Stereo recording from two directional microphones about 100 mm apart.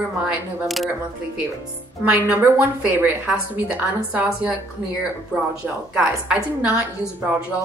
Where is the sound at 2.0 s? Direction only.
20° right (ahead or behind).